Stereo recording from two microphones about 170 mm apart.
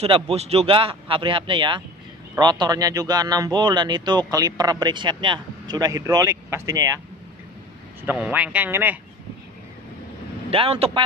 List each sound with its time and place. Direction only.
0.0 s a man's voice: 35° right (ahead or behind); by 7.0 s 20° right (ahead or behind)
8.0 s speech: 10° right (ahead or behind)
10.5 s speech: 35° right (ahead or behind)